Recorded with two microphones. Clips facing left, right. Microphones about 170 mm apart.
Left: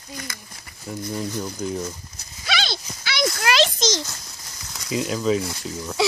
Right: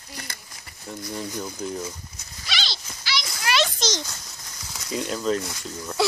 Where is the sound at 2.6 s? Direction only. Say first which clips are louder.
Left 6 dB; 55° left (ahead or behind).